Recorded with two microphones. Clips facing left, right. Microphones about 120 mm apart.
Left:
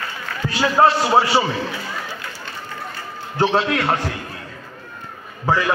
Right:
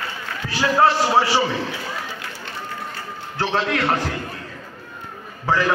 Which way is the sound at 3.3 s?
10° left (ahead or behind).